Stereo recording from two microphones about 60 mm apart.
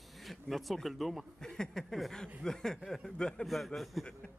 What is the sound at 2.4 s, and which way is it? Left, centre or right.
Speech, centre.